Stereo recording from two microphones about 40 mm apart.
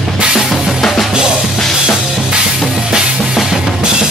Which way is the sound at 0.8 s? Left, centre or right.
Centre.